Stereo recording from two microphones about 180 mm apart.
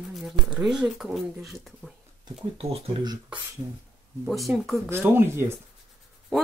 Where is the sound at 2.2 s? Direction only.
30° right (ahead or behind).